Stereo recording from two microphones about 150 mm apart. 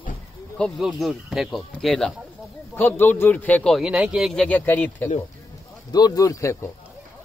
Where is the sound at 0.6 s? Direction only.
Centre (ahead or behind).